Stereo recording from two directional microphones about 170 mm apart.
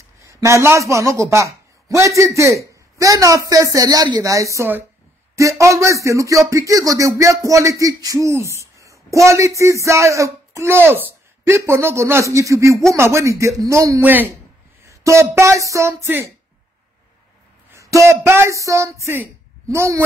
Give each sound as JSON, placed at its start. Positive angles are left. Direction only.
{"t": 0.3, "sound": "a man's voice", "side_deg": -15}
{"t": 17.7, "sound": "speech", "side_deg": -20}